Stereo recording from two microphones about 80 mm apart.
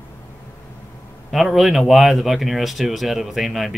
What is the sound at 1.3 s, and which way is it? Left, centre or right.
Speech, centre.